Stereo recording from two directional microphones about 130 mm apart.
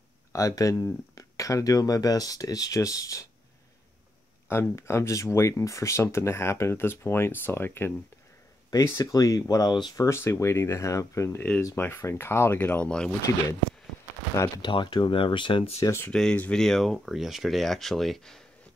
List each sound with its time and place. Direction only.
0.3 s speech: 25° left (ahead or behind)
4.5 s speech: 20° left (ahead or behind); by 10.0 s 35° left (ahead or behind)
10.0 s speech: 20° left (ahead or behind)
14.6 s speech: 35° left (ahead or behind)
15.8 s speech: 20° left (ahead or behind)
16.1 s speech: 5° left (ahead or behind)